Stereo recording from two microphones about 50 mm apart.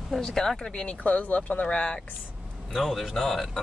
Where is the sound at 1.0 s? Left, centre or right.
Left.